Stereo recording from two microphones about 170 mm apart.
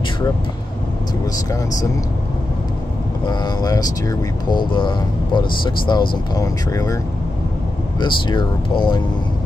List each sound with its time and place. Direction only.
3.3 s speech: 25° left (ahead or behind)
8.0 s speech: 25° left (ahead or behind)